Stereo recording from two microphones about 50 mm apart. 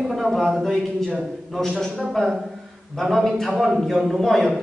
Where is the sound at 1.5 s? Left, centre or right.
Centre.